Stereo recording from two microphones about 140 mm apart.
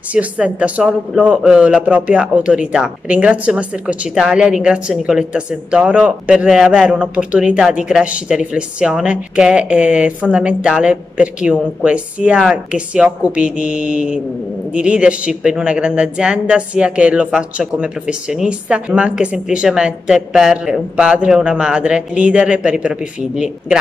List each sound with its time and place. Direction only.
0.1 s a man's voice: 10° right (ahead or behind)